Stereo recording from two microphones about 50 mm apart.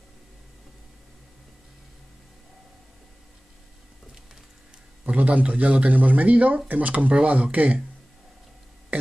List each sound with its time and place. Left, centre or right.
5.0 s speech: right